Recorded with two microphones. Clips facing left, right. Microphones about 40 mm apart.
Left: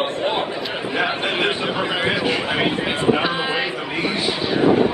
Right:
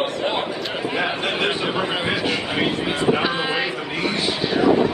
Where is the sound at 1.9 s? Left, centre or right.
Centre.